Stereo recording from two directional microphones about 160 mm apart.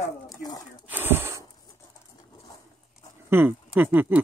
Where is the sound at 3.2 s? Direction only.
15° right (ahead or behind).